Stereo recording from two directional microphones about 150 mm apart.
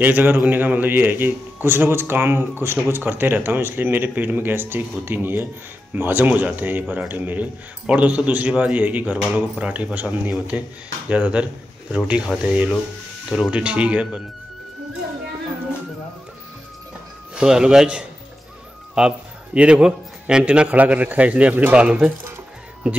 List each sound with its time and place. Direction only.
0.0 s a man's voice: 15° right (ahead or behind)
17.4 s a man's voice: 5° right (ahead or behind)